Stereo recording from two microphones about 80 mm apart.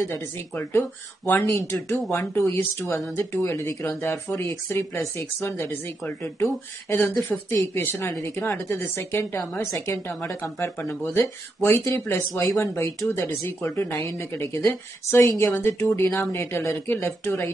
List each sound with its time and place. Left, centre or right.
0.1 s speech: left